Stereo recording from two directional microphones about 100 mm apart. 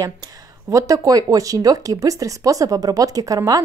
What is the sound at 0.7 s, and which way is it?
Speech, 35° right (ahead or behind).